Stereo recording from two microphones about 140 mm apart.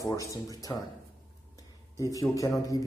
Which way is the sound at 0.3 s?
25° left (ahead or behind).